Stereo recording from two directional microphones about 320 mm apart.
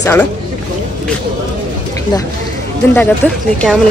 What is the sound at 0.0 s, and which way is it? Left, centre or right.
Speech, centre.